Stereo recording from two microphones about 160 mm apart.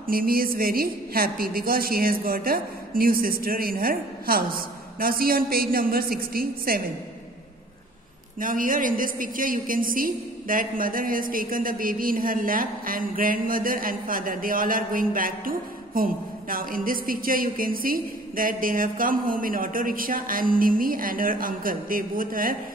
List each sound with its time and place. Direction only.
0.0 s a woman's voice: 65° right (ahead or behind)
8.4 s a woman's voice: 60° right (ahead or behind)